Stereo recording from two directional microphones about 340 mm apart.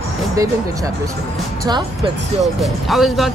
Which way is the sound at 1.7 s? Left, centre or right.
Centre.